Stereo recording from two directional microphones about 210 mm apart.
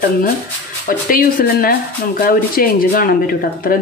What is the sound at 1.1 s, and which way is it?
Speech, 45° left (ahead or behind).